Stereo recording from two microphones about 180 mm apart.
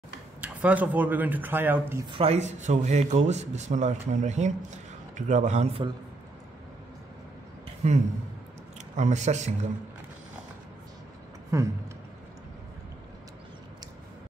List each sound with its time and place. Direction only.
0.4 s speech: 10° right (ahead or behind)
2.0 s a man's voice: 30° right (ahead or behind)
7.8 s a man's voice: 40° right (ahead or behind)
11.5 s speech: 15° right (ahead or behind)